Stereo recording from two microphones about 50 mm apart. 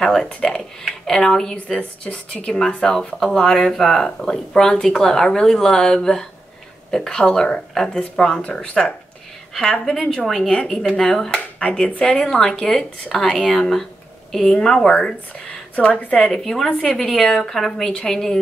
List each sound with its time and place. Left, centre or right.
0.0 s speech: centre
1.8 s speech: left
2.4 s speech: centre
10.5 s speech: centre
15.0 s speech: left
16.3 s speech: centre